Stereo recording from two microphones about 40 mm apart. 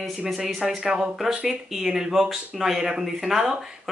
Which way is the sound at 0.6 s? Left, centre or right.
Right.